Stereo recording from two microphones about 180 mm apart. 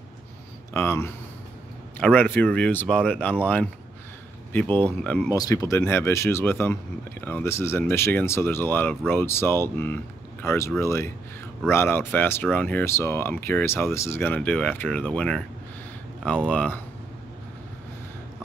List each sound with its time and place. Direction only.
0.7 s speech: 15° left (ahead or behind)
4.6 s speech: 25° right (ahead or behind)
5.0 s speech: 10° left (ahead or behind)
5.3 s speech: 20° left (ahead or behind)